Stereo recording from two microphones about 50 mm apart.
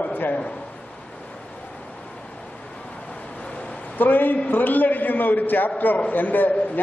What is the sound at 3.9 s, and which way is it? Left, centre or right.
A man's voice, left.